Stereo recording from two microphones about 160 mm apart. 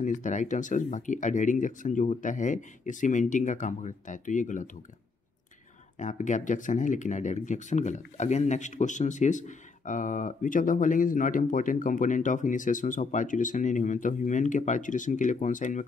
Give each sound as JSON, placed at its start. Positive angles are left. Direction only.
{"t": 0.0, "sound": "speech", "side_deg": 50}
{"t": 5.9, "sound": "speech", "side_deg": 50}